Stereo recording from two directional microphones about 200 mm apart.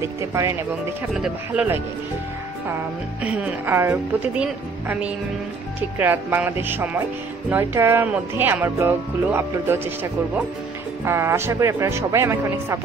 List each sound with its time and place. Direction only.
0.2 s speech: 15° right (ahead or behind)
1.1 s speech: 5° right (ahead or behind)